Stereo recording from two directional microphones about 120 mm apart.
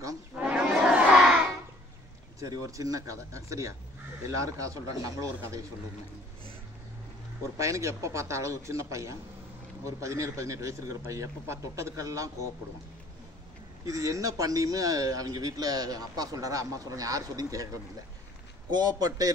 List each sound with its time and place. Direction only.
0.4 s battle cry: 10° right (ahead or behind)
2.4 s a man's voice: 30° right (ahead or behind)
7.5 s a man's voice: 25° right (ahead or behind)
13.8 s a man's voice: 25° right (ahead or behind)
18.7 s a man's voice: 35° right (ahead or behind)